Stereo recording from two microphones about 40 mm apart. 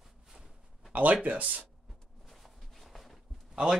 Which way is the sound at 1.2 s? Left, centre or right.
Right.